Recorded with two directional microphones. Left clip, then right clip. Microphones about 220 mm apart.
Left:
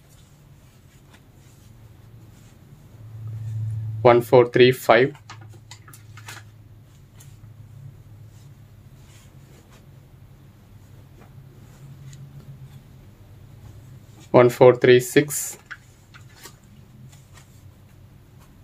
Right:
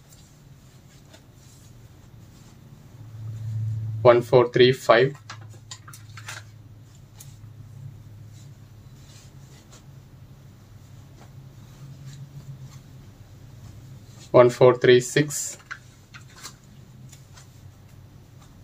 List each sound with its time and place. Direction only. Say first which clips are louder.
4.0 s speech: left 2 dB; 45° left (ahead or behind)
14.3 s speech: left 2 dB; 45° left (ahead or behind)